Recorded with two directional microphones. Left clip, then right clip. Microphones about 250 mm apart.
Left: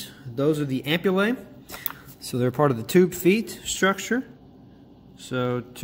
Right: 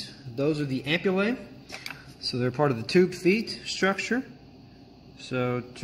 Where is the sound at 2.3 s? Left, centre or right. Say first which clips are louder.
Left 4 dB; centre.